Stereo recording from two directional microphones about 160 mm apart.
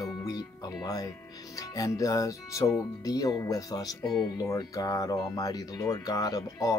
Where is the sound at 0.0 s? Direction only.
25° left (ahead or behind).